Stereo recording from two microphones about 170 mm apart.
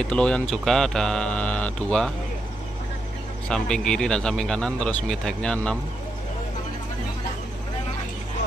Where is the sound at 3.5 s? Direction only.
5° left (ahead or behind).